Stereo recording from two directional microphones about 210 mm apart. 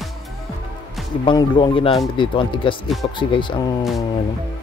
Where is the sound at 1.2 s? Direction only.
20° left (ahead or behind).